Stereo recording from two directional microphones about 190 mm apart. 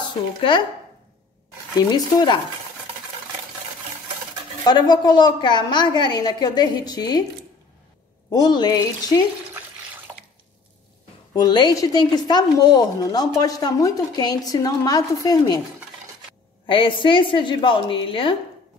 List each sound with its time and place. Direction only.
0.4 s speech: 25° left (ahead or behind)
1.9 s speech: 20° left (ahead or behind)
4.6 s speech: 20° left (ahead or behind)
8.3 s speech: 20° left (ahead or behind)
10.1 s drip: 15° right (ahead or behind)
11.3 s speech: 20° left (ahead or behind)
16.6 s speech: 25° left (ahead or behind)